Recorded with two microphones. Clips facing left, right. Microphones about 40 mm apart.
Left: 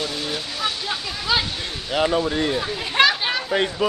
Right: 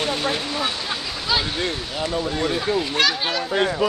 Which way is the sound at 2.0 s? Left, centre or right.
Left.